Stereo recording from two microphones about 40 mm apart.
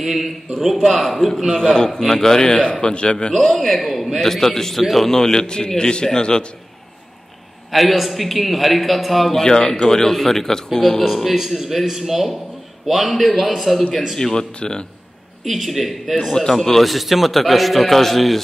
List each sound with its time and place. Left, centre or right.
0.0 s a man's voice: centre
1.5 s a man's voice: centre
3.3 s a man's voice: centre
7.7 s a man's voice: centre
9.4 s a man's voice: centre
14.1 s speech: centre
15.4 s a man's voice: centre